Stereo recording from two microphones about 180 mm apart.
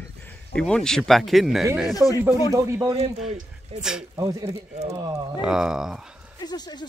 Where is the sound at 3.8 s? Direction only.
5° right (ahead or behind).